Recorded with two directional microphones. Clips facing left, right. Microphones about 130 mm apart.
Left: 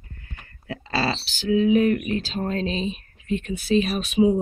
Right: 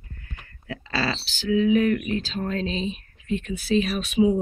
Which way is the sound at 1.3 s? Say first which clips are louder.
Left 1 dB; 40° left (ahead or behind).